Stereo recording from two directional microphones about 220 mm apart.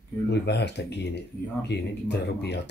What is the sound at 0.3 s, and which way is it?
Speech, 50° left (ahead or behind).